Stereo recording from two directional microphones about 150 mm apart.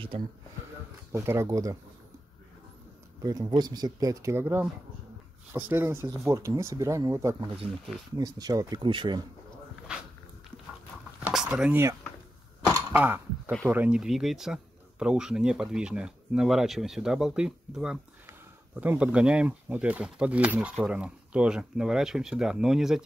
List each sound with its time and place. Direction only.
0.1 s speech: 40° right (ahead or behind)
1.1 s speech: 15° right (ahead or behind)
3.2 s speech: 25° right (ahead or behind)
11.1 s a sound: 5° right (ahead or behind)
13.7 s speech: 10° right (ahead or behind)